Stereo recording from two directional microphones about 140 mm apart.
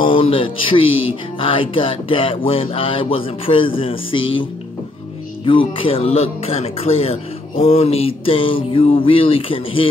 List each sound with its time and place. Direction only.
0.0 s a man's voice: 40° left (ahead or behind)